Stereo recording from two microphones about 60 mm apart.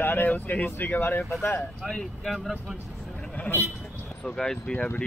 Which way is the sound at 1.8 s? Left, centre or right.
Centre.